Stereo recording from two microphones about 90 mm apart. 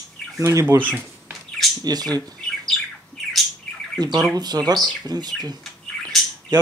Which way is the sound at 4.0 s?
50° right (ahead or behind).